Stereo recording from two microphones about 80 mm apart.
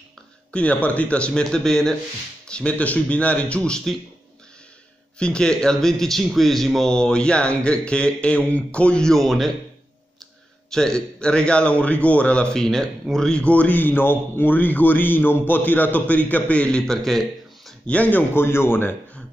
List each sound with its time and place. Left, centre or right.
0.5 s speech: centre
5.2 s speech: centre
10.7 s a man's voice: centre
17.8 s a man's voice: centre